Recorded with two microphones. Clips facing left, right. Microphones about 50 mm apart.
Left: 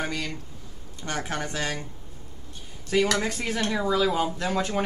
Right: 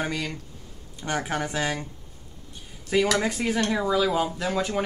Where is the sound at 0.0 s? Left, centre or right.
Centre.